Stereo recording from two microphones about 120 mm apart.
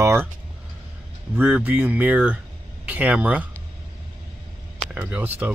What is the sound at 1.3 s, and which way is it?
Speech, 10° right (ahead or behind).